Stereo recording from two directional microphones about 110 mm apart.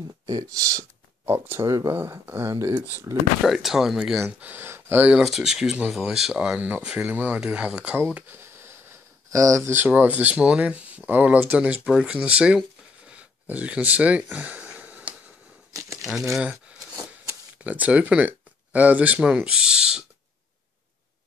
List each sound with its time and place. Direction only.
0.3 s speech: 35° right (ahead or behind)
1.2 s speech: 20° right (ahead or behind)
3.4 s speech: 5° right (ahead or behind)
4.4 s speech: 15° right (ahead or behind)
5.2 s speech: 5° right (ahead or behind); by 8.7 s 20° right (ahead or behind)
9.3 s speech: 30° right (ahead or behind); by 12.6 s 10° right (ahead or behind)
13.1 s a sound: 15° right (ahead or behind)
15.7 s a sound: 30° right (ahead or behind)
17.6 s speech: 15° right (ahead or behind)